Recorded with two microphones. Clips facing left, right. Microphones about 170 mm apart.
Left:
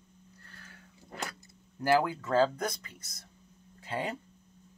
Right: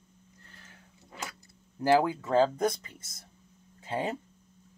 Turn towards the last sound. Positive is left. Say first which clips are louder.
# right 3 dB
turn(degrees=-20)  # may be behind; listen again after turning